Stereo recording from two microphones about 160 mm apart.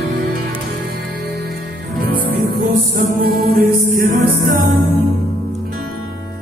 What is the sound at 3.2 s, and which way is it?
Music, 70° right (ahead or behind).